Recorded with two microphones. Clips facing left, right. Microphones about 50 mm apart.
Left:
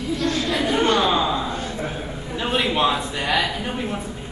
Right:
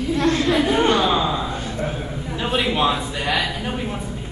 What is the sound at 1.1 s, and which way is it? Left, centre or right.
A man's voice, centre.